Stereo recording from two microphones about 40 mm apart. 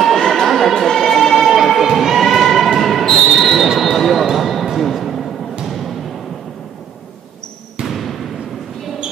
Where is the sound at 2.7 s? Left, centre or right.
Centre.